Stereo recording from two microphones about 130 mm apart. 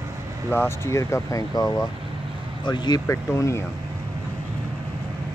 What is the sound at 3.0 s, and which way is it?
Speech, 20° left (ahead or behind).